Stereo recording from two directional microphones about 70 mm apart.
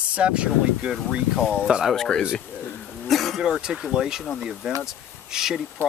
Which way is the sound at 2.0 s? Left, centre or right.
Centre.